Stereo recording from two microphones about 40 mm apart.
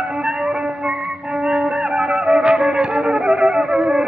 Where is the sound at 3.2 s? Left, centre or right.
Centre.